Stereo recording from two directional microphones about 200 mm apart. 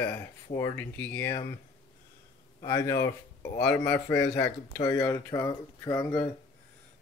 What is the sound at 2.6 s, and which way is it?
Speech, 15° left (ahead or behind).